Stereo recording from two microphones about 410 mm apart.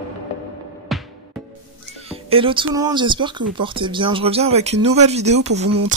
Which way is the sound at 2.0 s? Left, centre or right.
Centre.